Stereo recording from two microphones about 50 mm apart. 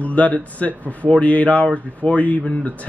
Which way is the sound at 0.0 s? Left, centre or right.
Left.